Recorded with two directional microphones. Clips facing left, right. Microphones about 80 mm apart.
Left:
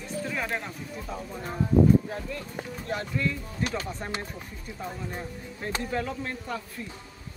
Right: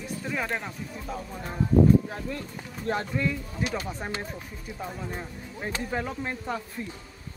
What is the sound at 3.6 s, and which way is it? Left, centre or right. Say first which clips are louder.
Speech: even; centre.